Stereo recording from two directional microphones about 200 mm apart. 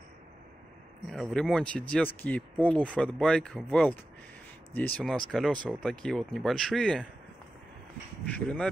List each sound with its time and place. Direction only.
1.3 s speech: 5° left (ahead or behind)
8.3 s speech: 5° left (ahead or behind)